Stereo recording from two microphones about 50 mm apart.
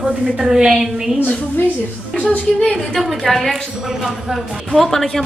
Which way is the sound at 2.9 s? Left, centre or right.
Centre.